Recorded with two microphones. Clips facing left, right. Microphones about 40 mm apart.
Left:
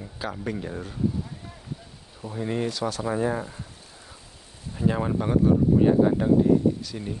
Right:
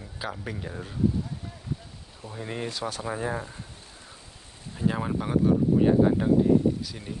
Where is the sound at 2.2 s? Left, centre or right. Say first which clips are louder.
Left 6 dB; centre.